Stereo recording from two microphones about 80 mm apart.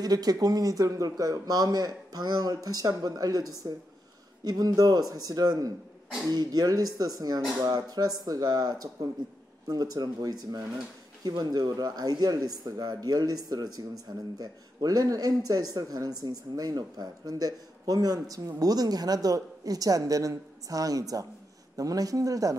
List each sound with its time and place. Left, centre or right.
0.0 s speech: right